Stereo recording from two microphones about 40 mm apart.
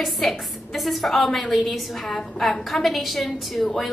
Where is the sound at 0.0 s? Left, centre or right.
Centre.